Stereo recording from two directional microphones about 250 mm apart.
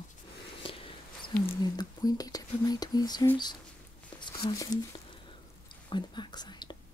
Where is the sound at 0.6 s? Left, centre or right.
Left.